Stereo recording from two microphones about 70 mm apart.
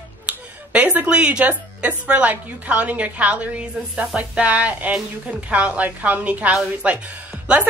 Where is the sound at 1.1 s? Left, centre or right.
Centre.